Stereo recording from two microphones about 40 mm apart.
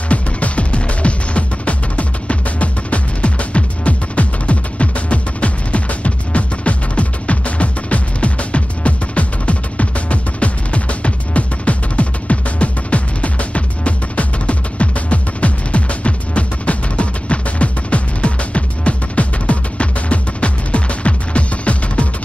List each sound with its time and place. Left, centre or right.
0.1 s music: left